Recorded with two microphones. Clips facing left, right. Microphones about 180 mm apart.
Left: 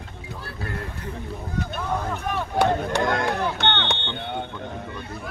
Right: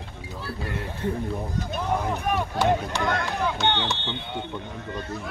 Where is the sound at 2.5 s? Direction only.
50° left (ahead or behind).